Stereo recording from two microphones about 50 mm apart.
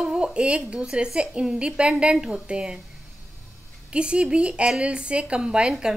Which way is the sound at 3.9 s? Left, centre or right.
Right.